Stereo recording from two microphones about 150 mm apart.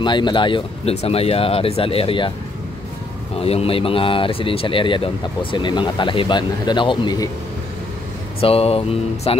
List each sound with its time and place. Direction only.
0.0 s speech: 30° left (ahead or behind)
3.3 s speech: 40° left (ahead or behind)
8.4 s speech: 40° left (ahead or behind)